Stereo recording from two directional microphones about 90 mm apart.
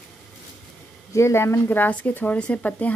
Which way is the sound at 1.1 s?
30° left (ahead or behind).